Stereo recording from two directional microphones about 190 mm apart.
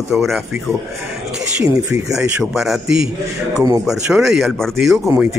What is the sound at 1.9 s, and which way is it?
A man's voice, 5° right (ahead or behind).